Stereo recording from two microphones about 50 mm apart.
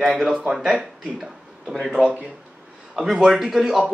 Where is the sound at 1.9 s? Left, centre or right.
Centre.